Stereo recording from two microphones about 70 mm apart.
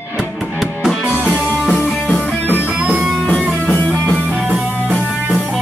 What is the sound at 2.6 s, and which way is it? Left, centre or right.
Music, centre.